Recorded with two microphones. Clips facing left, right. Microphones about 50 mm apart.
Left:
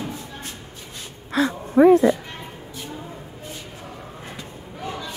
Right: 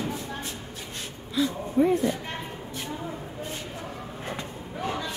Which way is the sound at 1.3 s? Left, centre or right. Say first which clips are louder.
Left 6 dB; left.